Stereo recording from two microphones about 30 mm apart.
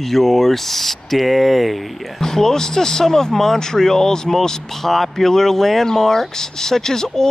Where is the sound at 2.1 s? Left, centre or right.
Centre.